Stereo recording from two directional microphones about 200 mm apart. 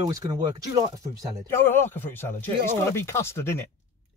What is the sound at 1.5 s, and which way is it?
Speech, 10° left (ahead or behind).